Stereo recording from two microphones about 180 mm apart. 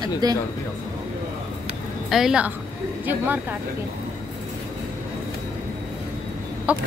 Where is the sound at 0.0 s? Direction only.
20° right (ahead or behind).